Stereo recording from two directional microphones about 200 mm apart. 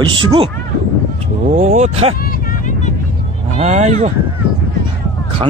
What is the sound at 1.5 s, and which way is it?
Speech, 35° right (ahead or behind).